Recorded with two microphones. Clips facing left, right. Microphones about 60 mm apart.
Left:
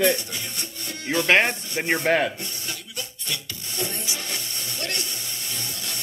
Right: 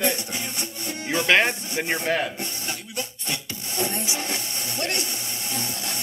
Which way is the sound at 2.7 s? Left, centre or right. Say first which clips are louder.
Right 3 dB; right.